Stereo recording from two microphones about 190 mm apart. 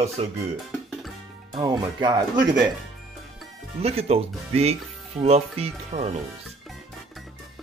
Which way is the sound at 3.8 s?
35° right (ahead or behind).